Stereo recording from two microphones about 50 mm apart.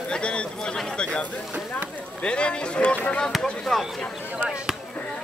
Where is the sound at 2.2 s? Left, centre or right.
Left.